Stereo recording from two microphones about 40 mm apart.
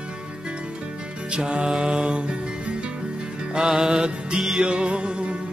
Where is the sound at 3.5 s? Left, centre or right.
Centre.